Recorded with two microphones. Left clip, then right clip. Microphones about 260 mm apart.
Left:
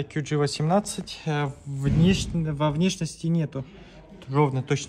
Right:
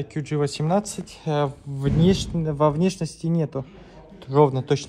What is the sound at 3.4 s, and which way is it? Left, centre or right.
Speech, centre.